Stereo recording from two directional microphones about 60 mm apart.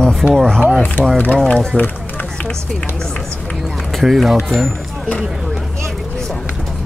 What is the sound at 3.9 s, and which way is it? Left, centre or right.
Speech, centre.